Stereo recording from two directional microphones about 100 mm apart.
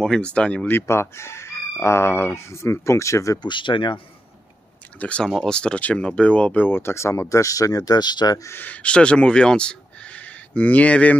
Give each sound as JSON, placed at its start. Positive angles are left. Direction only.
{"t": 0.0, "sound": "speech", "side_deg": 10}
{"t": 0.7, "sound": "speech", "side_deg": 25}
{"t": 3.4, "sound": "speech", "side_deg": 55}
{"t": 4.9, "sound": "speech", "side_deg": 10}
{"t": 8.5, "sound": "speech", "side_deg": 15}